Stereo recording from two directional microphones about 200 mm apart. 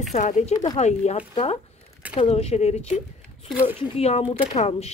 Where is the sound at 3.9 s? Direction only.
30° left (ahead or behind).